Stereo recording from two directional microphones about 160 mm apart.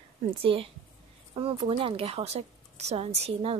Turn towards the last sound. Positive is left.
turn(degrees=-40)  # may be behind; listen again after turning